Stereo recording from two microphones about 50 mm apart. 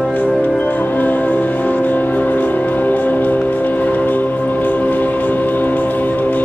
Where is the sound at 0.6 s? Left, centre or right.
Left.